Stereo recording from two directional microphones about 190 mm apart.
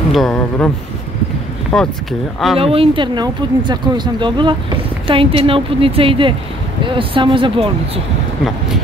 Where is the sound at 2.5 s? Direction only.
30° right (ahead or behind).